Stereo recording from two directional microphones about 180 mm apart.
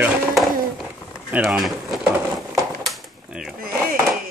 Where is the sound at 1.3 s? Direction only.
Centre (ahead or behind).